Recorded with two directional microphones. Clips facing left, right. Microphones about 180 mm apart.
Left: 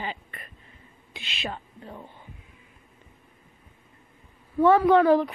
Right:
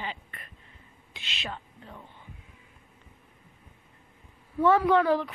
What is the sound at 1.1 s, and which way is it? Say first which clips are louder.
Speech: left 5 dB; 10° left (ahead or behind).